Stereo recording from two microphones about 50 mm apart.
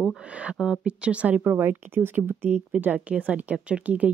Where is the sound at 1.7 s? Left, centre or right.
Right.